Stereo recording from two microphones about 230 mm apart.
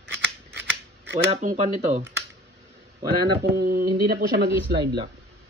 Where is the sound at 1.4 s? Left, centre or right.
Right.